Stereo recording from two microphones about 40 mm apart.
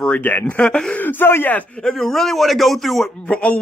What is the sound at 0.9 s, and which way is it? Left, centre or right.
Speech, left.